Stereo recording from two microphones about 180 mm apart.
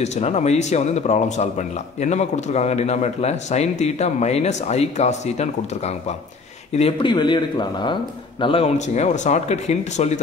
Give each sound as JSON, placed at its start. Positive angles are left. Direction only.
{"t": 0.0, "sound": "a man's voice", "side_deg": 40}
{"t": 6.7, "sound": "a man's voice", "side_deg": 30}